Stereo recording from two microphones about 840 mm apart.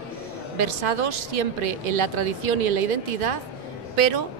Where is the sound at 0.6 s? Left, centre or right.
Right.